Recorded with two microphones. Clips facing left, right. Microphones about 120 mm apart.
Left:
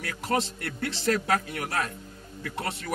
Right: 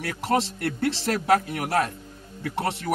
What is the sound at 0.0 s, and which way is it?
Speech, 30° right (ahead or behind).